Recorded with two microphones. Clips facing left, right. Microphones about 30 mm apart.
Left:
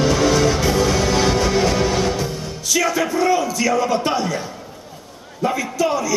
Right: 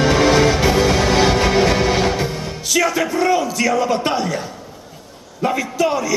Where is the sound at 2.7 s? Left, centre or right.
Centre.